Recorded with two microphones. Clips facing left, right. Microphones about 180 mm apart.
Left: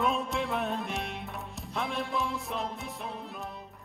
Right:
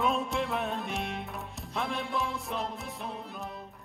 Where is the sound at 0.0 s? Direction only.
Centre (ahead or behind).